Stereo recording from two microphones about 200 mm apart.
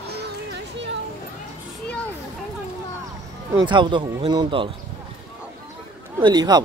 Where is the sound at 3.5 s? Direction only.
20° right (ahead or behind).